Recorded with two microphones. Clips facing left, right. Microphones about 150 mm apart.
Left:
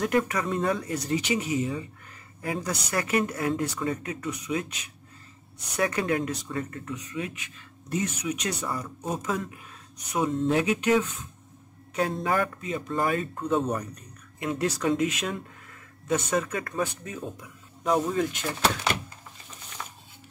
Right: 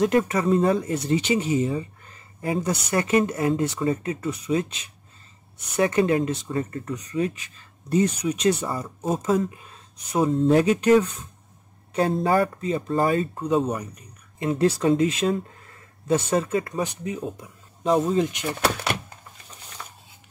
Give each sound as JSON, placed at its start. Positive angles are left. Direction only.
{"t": 0.0, "sound": "speech", "side_deg": -25}
{"t": 13.6, "sound": "speech", "side_deg": 0}
{"t": 14.4, "sound": "speech", "side_deg": -30}